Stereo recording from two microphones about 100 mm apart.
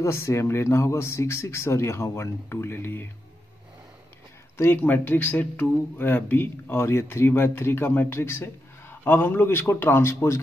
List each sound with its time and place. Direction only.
0.0 s speech: 25° left (ahead or behind)
4.6 s speech: 20° left (ahead or behind)